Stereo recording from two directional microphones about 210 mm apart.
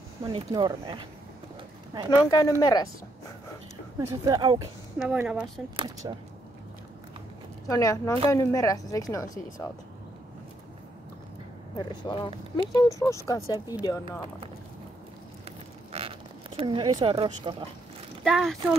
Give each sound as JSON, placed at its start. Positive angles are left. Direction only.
{"t": 0.2, "sound": "speech", "side_deg": -25}
{"t": 2.0, "sound": "a woman's voice", "side_deg": 20}
{"t": 4.1, "sound": "speech", "side_deg": -15}
{"t": 4.9, "sound": "a woman's voice", "side_deg": -5}
{"t": 5.8, "sound": "speech", "side_deg": -20}
{"t": 7.6, "sound": "a woman's voice", "side_deg": 15}
{"t": 11.7, "sound": "a woman's voice", "side_deg": 20}
{"t": 15.4, "sound": "zipper", "side_deg": -25}
{"t": 18.2, "sound": "speech", "side_deg": 0}